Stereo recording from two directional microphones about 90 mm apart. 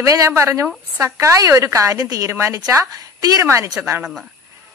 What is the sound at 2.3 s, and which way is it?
Speech, 30° right (ahead or behind).